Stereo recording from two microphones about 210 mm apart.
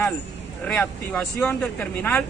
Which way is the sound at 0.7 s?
5° left (ahead or behind).